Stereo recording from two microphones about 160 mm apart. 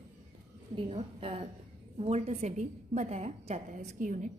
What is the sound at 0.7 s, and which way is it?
A woman's voice, 40° right (ahead or behind).